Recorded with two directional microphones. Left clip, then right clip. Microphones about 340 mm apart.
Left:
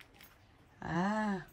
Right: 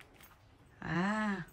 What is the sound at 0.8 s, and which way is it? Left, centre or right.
Speech, centre.